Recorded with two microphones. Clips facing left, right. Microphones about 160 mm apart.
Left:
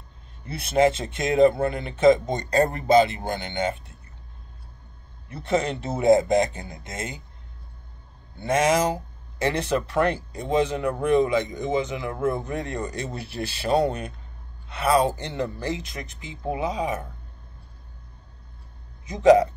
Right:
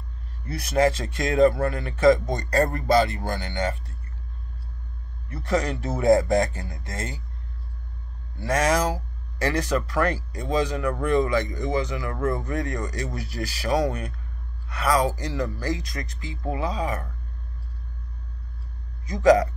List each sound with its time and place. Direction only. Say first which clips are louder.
0.5 s speech: left 1 dB; 25° left (ahead or behind)
5.3 s speech: left 1 dB; 25° left (ahead or behind)
8.4 s speech: left 2 dB; 20° left (ahead or behind)
19.0 s speech: left 2 dB; 25° left (ahead or behind)